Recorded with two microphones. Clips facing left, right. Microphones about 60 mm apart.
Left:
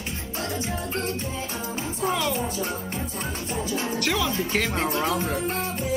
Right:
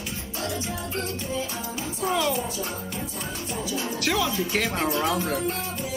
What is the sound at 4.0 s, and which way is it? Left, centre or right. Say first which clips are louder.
Speech: right 2 dB; centre.